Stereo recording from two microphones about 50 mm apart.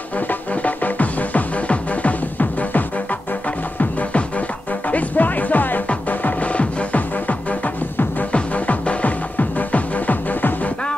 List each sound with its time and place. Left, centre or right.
0.3 s music: left
4.9 s music: left